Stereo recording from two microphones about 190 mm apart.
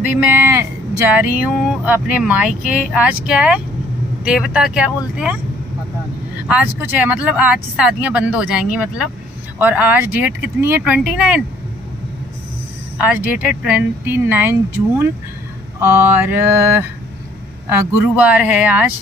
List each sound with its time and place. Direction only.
0.2 s speech: 10° right (ahead or behind)
6.4 s speech: 5° right (ahead or behind)
12.9 s speech: 10° right (ahead or behind)
18.1 s speech: 5° right (ahead or behind)